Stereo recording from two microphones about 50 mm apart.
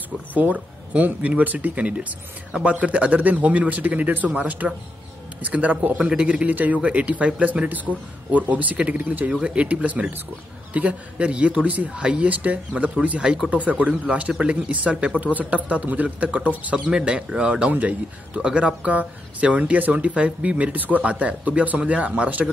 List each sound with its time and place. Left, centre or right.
0.3 s speech: right
5.9 s a man's voice: centre
6.2 s speech: right
9.4 s speech: right